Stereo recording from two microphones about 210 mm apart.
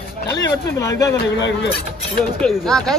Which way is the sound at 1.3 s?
55° left (ahead or behind).